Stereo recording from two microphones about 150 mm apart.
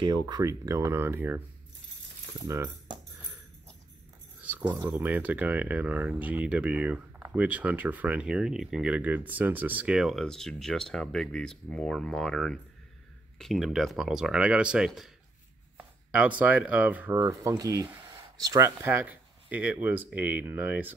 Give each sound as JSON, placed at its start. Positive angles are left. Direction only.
{"t": 0.0, "sound": "speech", "side_deg": -30}
{"t": 2.4, "sound": "speech", "side_deg": -20}
{"t": 4.4, "sound": "keys jangling", "side_deg": -10}
{"t": 4.7, "sound": "speech", "side_deg": -15}